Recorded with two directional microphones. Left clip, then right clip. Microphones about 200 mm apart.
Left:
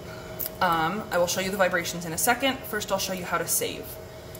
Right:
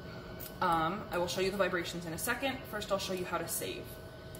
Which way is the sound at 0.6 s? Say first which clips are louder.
Left 7 dB; 60° left (ahead or behind).